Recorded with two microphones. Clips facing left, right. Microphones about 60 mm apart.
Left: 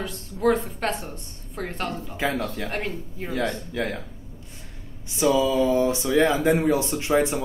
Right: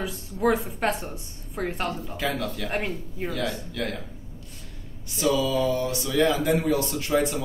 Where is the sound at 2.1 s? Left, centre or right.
Left.